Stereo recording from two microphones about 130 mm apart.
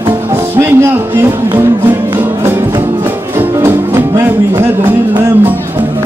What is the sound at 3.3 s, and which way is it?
Music, 20° right (ahead or behind).